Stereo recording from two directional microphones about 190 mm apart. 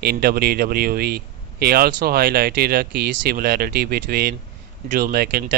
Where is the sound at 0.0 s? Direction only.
55° right (ahead or behind).